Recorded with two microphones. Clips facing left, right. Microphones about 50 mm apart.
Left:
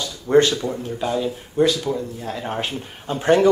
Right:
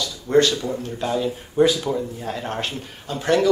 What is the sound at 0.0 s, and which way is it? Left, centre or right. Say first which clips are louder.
Speech: left 2 dB; left.